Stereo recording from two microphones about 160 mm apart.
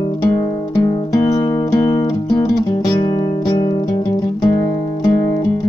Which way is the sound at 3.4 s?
25° left (ahead or behind).